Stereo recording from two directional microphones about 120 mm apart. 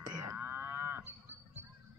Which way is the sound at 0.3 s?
20° right (ahead or behind).